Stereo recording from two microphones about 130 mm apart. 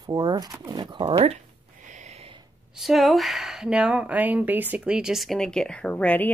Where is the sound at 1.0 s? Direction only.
50° right (ahead or behind).